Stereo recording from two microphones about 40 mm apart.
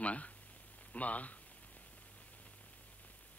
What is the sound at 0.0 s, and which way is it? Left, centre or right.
A man's voice, left.